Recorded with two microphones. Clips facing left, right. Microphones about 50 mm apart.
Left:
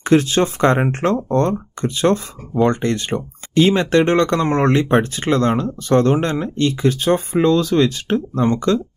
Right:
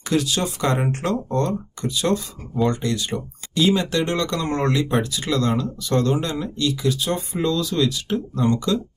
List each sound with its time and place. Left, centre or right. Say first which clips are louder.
0.0 s speech: left 7 dB; left